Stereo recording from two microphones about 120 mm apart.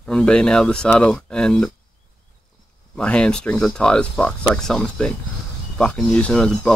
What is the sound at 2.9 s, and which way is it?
Speech, 10° left (ahead or behind).